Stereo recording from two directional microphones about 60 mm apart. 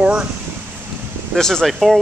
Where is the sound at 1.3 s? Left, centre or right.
Centre.